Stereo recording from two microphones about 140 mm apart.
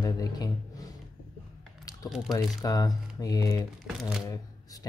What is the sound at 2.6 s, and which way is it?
Speech, 25° left (ahead or behind).